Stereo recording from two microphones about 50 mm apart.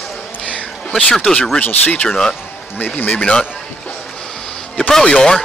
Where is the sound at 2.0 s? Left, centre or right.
Centre.